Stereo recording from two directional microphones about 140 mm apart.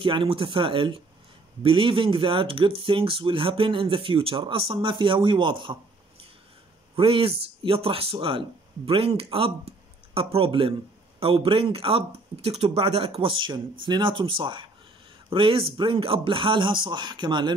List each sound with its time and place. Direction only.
0.0 s speech: 40° right (ahead or behind)